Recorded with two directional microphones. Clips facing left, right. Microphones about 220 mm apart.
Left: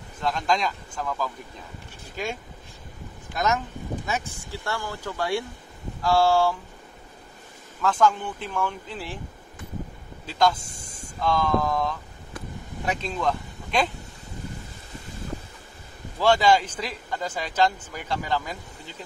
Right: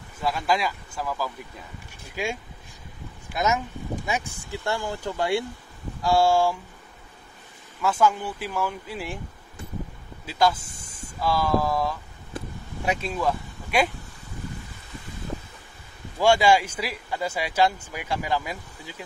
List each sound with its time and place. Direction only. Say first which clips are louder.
0.2 s speech: even; 5° right (ahead or behind)
3.3 s speech: right 1 dB; 10° right (ahead or behind)
7.8 s speech: even; 10° right (ahead or behind)
10.2 s speech: even; 5° right (ahead or behind)
16.2 s speech: right 1 dB; 10° right (ahead or behind)